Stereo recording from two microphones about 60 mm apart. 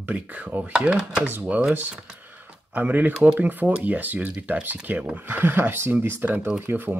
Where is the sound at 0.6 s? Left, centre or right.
Centre; by 7.0 s right.